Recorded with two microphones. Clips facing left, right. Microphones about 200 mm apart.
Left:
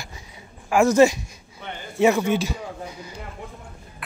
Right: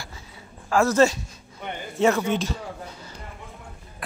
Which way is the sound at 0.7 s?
15° left (ahead or behind).